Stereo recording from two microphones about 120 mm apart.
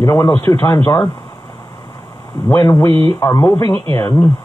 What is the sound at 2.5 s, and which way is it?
Speech, 20° left (ahead or behind).